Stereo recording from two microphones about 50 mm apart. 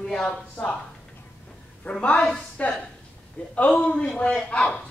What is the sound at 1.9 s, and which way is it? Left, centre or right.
A woman's voice, left.